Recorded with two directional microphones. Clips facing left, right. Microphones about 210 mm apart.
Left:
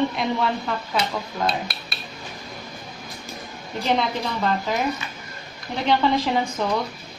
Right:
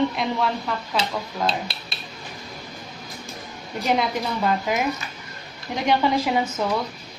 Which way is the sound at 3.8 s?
10° right (ahead or behind).